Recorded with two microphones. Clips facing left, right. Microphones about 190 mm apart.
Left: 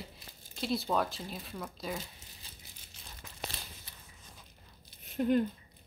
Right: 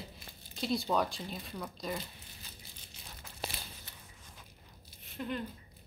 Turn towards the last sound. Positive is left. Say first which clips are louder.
# left 10 dB
turn(degrees=45)  # may be behind; listen again after turning